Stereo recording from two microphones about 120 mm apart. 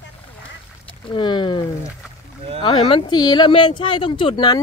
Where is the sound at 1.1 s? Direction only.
40° left (ahead or behind).